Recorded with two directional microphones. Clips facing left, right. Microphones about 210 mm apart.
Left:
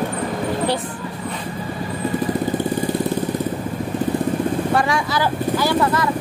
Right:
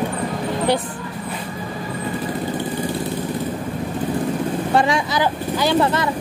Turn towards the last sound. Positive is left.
turn(degrees=-25)  # may be behind; listen again after turning